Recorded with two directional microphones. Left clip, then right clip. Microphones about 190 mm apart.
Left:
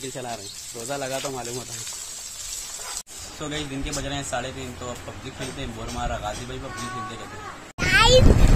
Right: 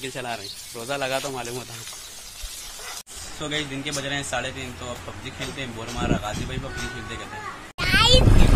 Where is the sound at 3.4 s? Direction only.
Centre (ahead or behind).